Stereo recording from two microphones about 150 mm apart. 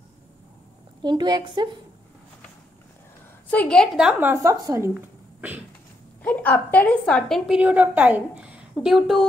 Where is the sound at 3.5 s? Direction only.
5° left (ahead or behind).